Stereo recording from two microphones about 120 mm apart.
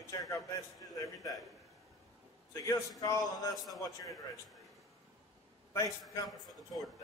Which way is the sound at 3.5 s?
Centre (ahead or behind).